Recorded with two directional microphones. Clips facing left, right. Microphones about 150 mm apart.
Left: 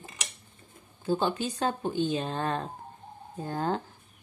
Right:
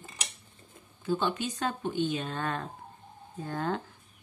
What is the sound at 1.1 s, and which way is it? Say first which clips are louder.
A woman's voice: left 2 dB; 35° left (ahead or behind).